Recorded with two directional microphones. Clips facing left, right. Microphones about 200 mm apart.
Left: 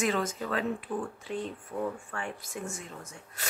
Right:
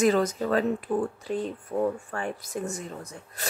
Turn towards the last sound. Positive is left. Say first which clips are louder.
# right 5 dB
turn(degrees=-40)  # may be behind; listen again after turning